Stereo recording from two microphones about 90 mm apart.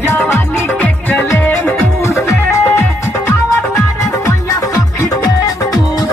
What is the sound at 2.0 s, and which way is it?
Music, 30° left (ahead or behind).